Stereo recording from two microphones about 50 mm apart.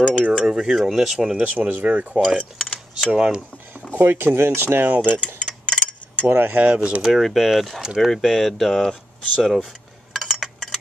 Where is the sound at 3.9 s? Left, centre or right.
Right.